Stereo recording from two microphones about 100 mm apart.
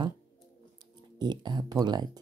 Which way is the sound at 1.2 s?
45° right (ahead or behind).